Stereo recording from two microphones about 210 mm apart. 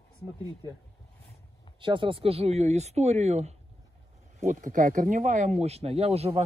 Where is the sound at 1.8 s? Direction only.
25° right (ahead or behind).